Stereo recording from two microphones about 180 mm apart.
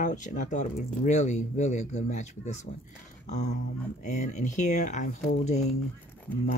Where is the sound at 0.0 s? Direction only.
45° left (ahead or behind).